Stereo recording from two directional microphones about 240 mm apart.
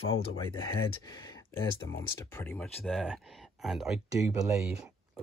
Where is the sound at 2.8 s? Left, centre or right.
Centre.